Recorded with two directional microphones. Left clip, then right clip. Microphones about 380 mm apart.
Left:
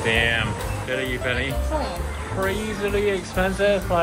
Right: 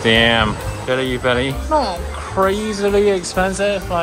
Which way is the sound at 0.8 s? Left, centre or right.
Centre.